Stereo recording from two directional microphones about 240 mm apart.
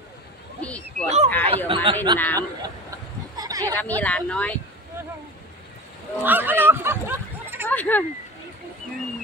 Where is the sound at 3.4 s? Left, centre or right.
Centre.